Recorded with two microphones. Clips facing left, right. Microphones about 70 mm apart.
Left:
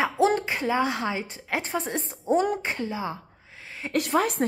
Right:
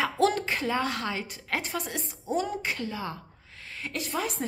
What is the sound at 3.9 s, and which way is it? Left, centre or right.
Speech, left.